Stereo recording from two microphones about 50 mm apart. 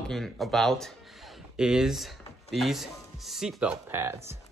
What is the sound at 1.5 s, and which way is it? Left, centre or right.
Speech, centre.